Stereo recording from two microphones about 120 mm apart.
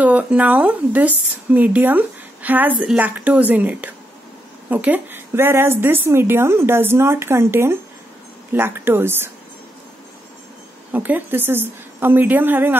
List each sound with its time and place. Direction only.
0.0 s a woman's voice: 10° right (ahead or behind)
10.9 s a woman's voice: 15° right (ahead or behind)